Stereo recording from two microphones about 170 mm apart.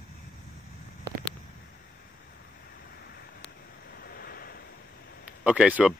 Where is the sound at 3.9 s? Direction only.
65° left (ahead or behind).